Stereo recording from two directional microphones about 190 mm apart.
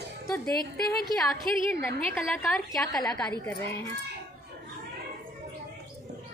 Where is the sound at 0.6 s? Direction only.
50° left (ahead or behind).